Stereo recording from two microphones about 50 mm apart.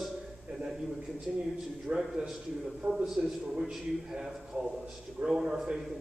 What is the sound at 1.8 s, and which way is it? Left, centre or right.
A man's voice, centre.